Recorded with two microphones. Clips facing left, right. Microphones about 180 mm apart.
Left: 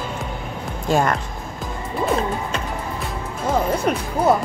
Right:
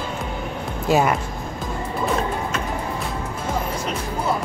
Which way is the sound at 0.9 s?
5° right (ahead or behind).